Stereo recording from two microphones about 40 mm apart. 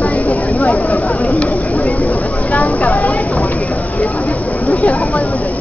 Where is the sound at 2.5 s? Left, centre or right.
Left.